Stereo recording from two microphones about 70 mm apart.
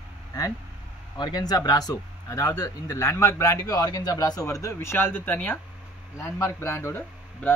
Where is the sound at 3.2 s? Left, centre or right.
Left.